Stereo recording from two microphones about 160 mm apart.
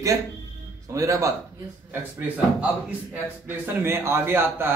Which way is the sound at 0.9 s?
20° right (ahead or behind).